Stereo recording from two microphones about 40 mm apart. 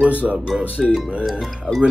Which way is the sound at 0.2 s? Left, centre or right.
Centre.